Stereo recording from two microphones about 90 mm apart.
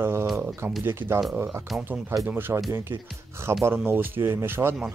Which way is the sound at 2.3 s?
25° right (ahead or behind).